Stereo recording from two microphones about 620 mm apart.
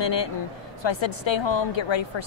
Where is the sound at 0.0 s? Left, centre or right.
Left.